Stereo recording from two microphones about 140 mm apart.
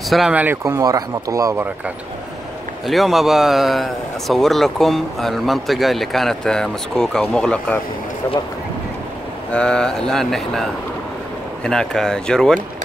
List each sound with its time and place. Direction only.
0.1 s speech: 5° right (ahead or behind); by 1.7 s 20° right (ahead or behind)
2.9 s speech: centre (ahead or behind)
9.5 s speech: 5° left (ahead or behind)